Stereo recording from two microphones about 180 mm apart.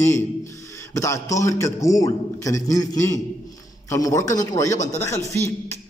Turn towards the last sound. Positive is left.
turn(degrees=15)  # may be behind; listen again after turning